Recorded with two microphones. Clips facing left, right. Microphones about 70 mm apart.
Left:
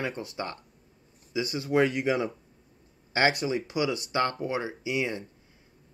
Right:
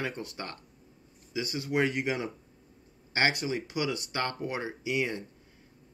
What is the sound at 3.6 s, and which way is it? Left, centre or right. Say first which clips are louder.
Speech: left 3 dB; left.